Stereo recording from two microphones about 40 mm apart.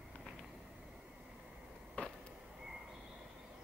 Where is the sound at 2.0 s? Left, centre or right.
Left.